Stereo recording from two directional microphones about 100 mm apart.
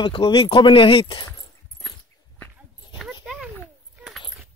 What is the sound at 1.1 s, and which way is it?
Speech, 45° left (ahead or behind).